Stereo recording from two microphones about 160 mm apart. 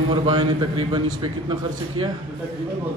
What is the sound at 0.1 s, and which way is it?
Speech, 30° right (ahead or behind).